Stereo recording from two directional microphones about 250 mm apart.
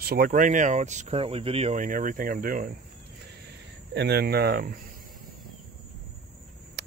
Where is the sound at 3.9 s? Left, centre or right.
Right.